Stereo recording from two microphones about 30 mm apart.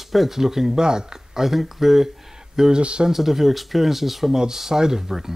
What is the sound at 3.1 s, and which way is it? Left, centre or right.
Speech, centre.